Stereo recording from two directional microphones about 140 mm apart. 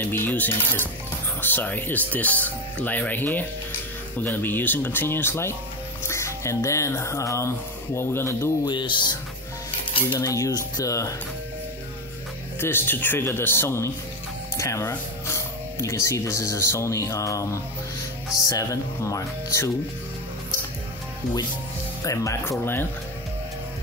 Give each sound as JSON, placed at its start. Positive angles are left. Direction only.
{"t": 0.0, "sound": "speech", "side_deg": 15}
{"t": 8.6, "sound": "speech", "side_deg": 35}
{"t": 10.1, "sound": "speech", "side_deg": 25}
{"t": 12.5, "sound": "speech", "side_deg": 15}
{"t": 22.0, "sound": "speech", "side_deg": 25}